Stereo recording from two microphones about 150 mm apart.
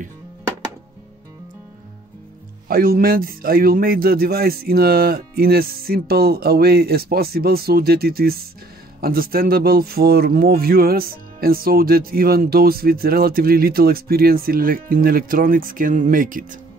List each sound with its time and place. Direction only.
2.7 s a man's voice: 75° right (ahead or behind)